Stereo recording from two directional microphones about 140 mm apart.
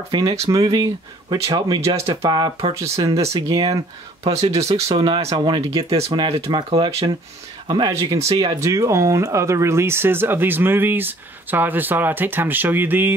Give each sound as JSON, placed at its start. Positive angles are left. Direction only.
{"t": 0.1, "sound": "speech", "side_deg": -25}
{"t": 4.2, "sound": "speech", "side_deg": -50}
{"t": 7.9, "sound": "speech", "side_deg": -20}